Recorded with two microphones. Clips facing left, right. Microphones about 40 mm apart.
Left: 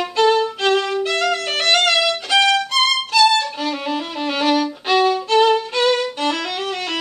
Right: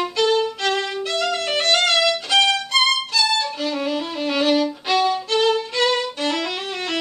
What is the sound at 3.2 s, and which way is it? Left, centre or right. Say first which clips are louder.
Violin: left 5 dB; centre.